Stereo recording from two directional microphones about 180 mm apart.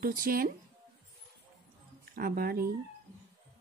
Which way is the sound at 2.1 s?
55° right (ahead or behind).